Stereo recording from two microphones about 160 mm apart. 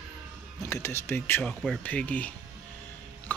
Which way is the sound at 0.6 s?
20° left (ahead or behind).